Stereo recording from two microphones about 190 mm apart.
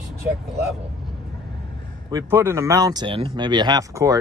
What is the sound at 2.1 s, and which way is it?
Speech, 15° right (ahead or behind).